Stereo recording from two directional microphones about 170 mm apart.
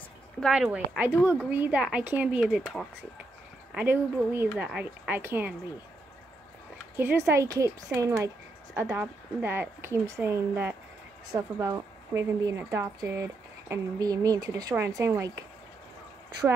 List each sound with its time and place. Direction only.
0.4 s speech: 5° right (ahead or behind)
3.7 s speech: 10° right (ahead or behind)
7.0 s speech: 15° right (ahead or behind)